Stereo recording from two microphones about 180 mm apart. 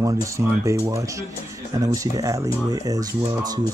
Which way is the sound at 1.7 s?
20° right (ahead or behind).